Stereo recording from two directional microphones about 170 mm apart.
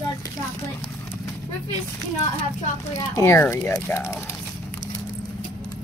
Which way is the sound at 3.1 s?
15° left (ahead or behind).